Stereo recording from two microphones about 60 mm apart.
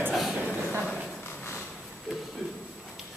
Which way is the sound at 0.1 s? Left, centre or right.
Centre.